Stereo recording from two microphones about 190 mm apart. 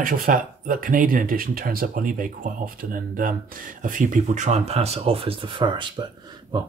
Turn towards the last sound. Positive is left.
turn(degrees=-25)  # may be behind; listen again after turning